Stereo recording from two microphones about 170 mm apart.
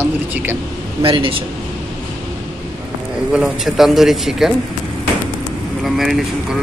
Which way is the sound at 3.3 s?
Centre (ahead or behind).